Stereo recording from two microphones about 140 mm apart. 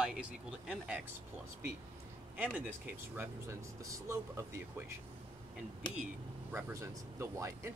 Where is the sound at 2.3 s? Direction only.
10° right (ahead or behind).